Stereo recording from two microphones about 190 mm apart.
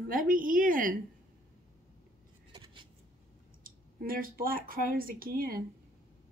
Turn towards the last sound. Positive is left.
turn(degrees=-50)  # may be behind; listen again after turning